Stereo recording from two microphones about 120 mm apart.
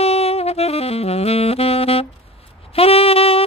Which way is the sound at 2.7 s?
55° left (ahead or behind).